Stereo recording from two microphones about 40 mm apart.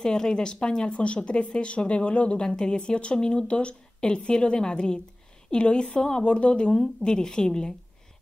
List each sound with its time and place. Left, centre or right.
0.0 s a woman's voice: centre